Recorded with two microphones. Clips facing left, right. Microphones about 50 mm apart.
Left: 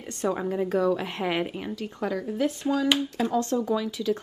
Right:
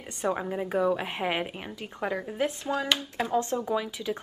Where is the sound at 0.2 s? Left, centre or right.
Centre.